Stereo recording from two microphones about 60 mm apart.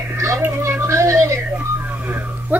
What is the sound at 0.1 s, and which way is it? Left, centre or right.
Music, right.